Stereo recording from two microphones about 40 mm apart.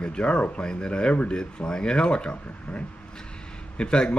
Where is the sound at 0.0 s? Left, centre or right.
Left.